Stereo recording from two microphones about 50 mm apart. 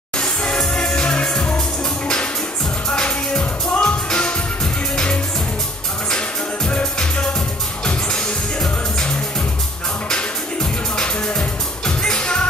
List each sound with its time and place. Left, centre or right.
0.2 s music: centre
2.9 s music: left